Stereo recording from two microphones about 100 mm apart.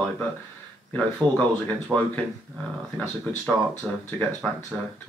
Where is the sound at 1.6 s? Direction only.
15° left (ahead or behind).